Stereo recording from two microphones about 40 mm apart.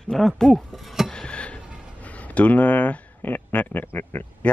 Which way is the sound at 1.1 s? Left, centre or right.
Centre.